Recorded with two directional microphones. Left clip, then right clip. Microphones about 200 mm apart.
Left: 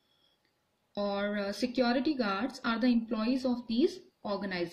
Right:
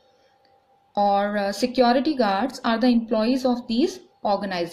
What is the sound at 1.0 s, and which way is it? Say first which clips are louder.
A woman's voice: right 13 dB; 20° left (ahead or behind).